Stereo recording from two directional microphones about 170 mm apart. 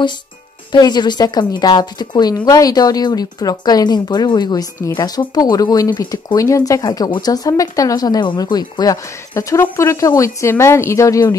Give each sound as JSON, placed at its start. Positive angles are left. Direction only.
{"t": 0.7, "sound": "speech", "side_deg": 25}